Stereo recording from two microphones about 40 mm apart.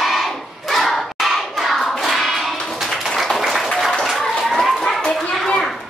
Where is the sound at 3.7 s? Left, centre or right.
Centre.